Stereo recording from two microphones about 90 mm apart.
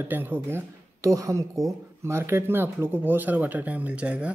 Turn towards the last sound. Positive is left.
turn(degrees=-15)  # may be behind; listen again after turning